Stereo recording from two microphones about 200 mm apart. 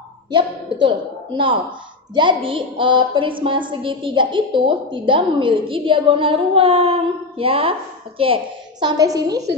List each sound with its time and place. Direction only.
0.3 s a woman's voice: 25° right (ahead or behind)